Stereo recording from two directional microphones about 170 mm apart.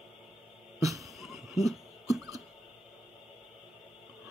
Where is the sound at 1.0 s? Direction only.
Centre (ahead or behind).